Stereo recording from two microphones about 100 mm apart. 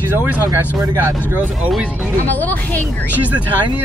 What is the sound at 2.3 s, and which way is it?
Speech, 20° left (ahead or behind).